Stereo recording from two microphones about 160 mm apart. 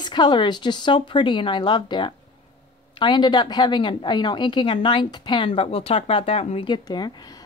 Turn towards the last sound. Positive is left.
turn(degrees=25)  # may be behind; listen again after turning